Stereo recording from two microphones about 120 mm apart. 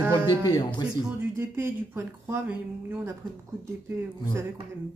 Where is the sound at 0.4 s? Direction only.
35° left (ahead or behind).